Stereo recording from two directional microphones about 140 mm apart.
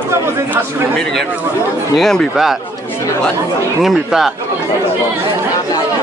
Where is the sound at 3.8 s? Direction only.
Centre (ahead or behind).